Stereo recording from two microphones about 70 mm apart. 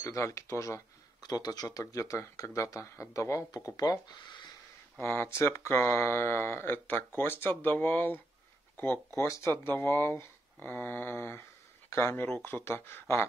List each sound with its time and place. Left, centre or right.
0.0 s speech: left
1.2 s speech: left
5.0 s speech: left